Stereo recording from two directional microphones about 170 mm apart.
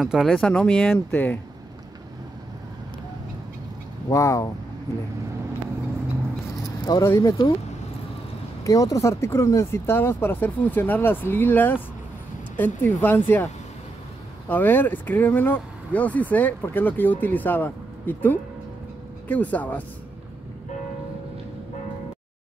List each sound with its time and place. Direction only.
0.0 s speech: centre (ahead or behind)
4.1 s speech: 20° left (ahead or behind)
6.9 s speech: 20° left (ahead or behind)
8.6 s speech: 20° left (ahead or behind)
14.5 s speech: 10° left (ahead or behind)